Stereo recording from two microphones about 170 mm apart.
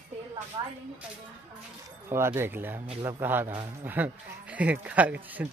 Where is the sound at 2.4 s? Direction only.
10° right (ahead or behind).